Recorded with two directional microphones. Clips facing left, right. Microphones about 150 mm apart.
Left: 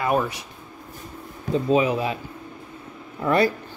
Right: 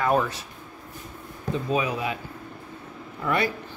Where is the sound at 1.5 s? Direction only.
25° left (ahead or behind).